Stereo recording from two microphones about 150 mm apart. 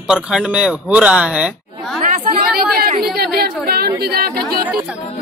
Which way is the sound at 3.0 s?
90° right.